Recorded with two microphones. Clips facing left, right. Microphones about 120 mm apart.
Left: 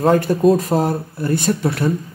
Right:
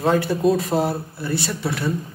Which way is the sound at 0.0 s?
45° left (ahead or behind).